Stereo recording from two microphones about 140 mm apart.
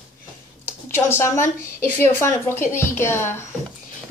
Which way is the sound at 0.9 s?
15° left (ahead or behind).